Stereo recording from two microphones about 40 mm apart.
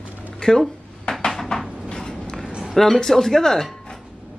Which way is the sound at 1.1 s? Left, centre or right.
Left.